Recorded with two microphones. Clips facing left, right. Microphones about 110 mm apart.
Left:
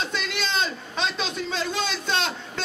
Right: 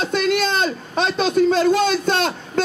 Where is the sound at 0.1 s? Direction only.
50° right (ahead or behind).